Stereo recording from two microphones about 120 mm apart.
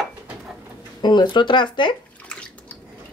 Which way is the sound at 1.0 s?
40° left (ahead or behind).